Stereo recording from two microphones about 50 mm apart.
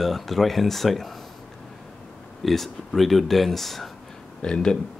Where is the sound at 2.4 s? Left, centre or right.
Centre.